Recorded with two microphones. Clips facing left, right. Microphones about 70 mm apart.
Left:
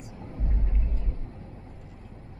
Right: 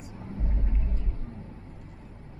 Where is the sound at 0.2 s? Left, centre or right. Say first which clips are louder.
Right 1 dB; centre.